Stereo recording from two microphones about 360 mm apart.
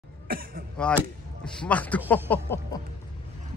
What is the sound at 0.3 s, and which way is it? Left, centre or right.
Speech, right.